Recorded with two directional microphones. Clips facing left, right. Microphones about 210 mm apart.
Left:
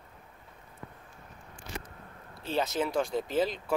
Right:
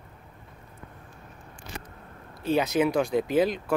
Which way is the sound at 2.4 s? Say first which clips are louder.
Right 7 dB; 15° right (ahead or behind).